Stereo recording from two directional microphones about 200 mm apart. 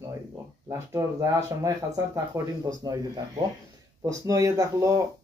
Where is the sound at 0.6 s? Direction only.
15° right (ahead or behind).